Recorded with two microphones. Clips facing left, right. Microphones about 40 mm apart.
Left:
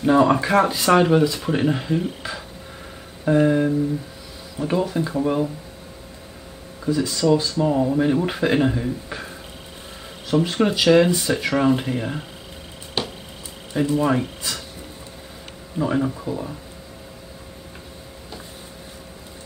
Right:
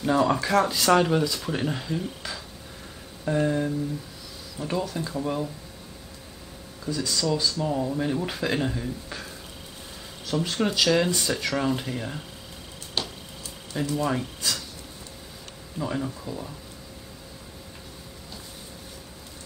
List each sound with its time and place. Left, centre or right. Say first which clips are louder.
0.0 s speech: left 6 dB; left
6.8 s speech: left 7 dB; left
13.0 s a sound: left 4 dB; centre
13.7 s speech: left 7 dB; left
15.8 s speech: left 8 dB; left